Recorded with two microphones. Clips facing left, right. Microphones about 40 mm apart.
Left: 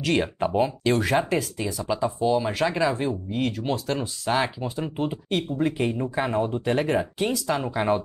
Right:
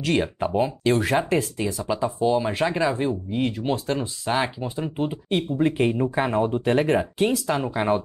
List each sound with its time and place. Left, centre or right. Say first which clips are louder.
0.0 s speech: even; centre
5.6 s speech: right 5 dB; centre